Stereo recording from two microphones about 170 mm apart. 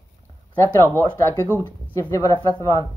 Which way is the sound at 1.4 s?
15° right (ahead or behind).